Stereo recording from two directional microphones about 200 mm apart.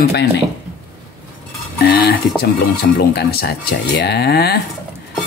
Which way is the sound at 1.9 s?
50° left (ahead or behind).